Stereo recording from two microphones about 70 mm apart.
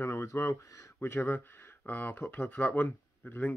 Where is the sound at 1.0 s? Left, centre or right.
Left.